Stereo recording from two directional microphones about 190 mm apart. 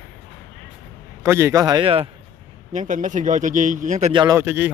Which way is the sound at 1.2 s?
15° right (ahead or behind).